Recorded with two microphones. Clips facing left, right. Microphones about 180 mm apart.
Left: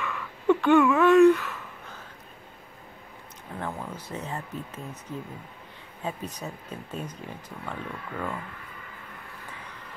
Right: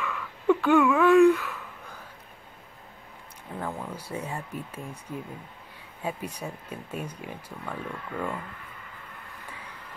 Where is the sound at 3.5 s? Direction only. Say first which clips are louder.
Even; 5° right (ahead or behind).